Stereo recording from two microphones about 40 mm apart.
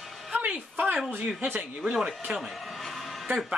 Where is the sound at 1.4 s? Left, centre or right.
Right.